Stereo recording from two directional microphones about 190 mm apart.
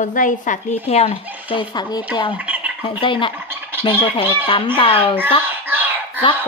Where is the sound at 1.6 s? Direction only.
20° left (ahead or behind).